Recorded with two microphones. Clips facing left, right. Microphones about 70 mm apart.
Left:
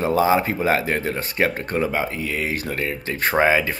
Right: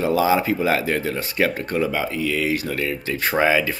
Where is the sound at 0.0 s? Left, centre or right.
Left.